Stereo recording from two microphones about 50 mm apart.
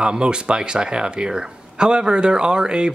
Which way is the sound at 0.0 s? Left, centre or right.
Centre.